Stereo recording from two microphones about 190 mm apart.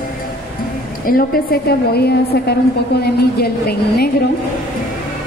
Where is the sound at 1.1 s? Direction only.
55° left (ahead or behind).